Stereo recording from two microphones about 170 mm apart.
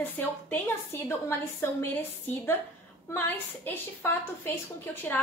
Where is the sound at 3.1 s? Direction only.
10° left (ahead or behind).